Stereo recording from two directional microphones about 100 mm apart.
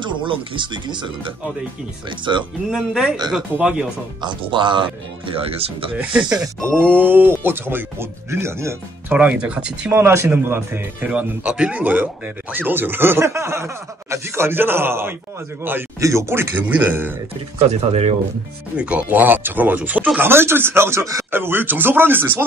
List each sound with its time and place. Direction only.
0.2 s speech: 55° right (ahead or behind)
2.7 s speech: 5° right (ahead or behind)
4.2 s speech: 50° right (ahead or behind); by 5.9 s 75° right (ahead or behind)
5.9 s speech: 10° right (ahead or behind)
6.4 s a man's voice: 25° right (ahead or behind)
9.1 s speech: 15° right (ahead or behind)
9.9 s a man's voice: 25° right (ahead or behind)
17.6 s speech: 90° right
18.8 s a man's voice: 15° right (ahead or behind)